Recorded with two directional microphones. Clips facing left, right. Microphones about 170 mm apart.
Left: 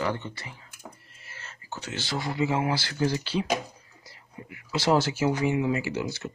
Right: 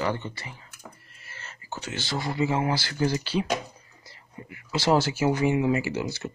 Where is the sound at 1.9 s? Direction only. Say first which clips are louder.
Right 1 dB; centre (ahead or behind).